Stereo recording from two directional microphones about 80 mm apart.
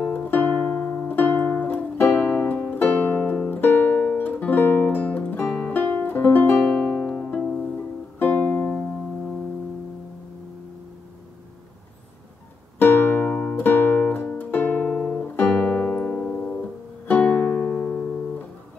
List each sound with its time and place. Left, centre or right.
0.0 s music: left
6.6 s music: centre
12.7 s music: left